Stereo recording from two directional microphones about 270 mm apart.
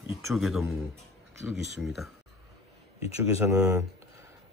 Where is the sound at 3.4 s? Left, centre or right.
Centre.